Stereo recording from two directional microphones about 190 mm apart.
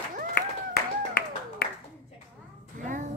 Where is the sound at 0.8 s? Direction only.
55° left (ahead or behind).